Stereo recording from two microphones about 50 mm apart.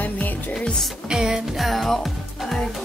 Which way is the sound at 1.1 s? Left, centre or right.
Centre.